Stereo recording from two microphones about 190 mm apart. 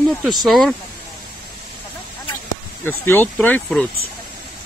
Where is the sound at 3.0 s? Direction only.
10° left (ahead or behind).